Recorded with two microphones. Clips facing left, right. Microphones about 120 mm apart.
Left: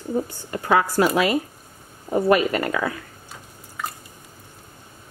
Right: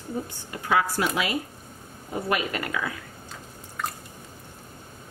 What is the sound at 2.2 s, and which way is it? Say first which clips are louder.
Speech: left 8 dB; 40° left (ahead or behind).